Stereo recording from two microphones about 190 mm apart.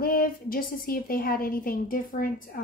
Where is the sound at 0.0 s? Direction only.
50° left (ahead or behind).